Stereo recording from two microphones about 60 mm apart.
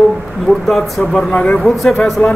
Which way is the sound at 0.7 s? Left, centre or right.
Centre.